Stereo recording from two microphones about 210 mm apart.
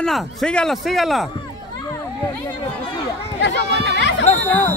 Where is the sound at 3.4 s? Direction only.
55° left (ahead or behind).